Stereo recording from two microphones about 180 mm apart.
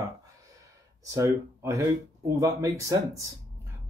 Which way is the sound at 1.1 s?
15° right (ahead or behind).